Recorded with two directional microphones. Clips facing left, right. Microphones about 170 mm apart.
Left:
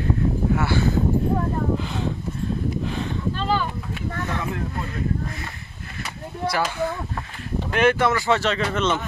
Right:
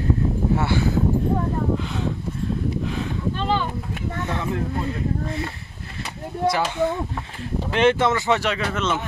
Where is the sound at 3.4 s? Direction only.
20° right (ahead or behind).